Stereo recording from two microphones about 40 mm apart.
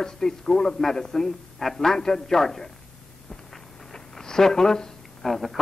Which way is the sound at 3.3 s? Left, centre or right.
Centre.